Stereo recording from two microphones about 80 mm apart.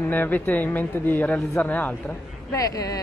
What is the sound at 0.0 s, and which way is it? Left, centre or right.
Speech, left.